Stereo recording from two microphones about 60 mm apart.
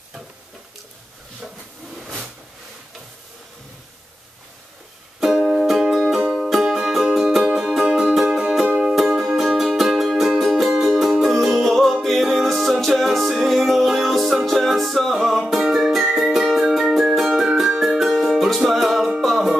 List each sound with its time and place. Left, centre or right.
2.0 s a sound: centre
5.4 s music: right
9.5 s music: centre